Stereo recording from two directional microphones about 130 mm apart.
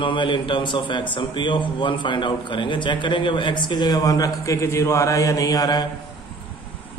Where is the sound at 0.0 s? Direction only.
40° left (ahead or behind).